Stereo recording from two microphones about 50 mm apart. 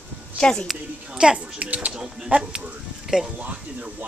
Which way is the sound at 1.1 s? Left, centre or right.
Centre.